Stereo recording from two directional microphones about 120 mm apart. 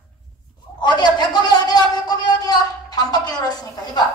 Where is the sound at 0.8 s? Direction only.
35° left (ahead or behind).